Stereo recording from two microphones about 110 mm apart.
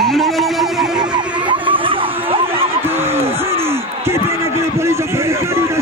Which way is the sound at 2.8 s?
20° right (ahead or behind).